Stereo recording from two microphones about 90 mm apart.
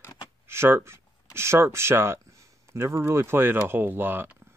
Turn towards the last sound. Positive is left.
turn(degrees=-25)  # may be behind; listen again after turning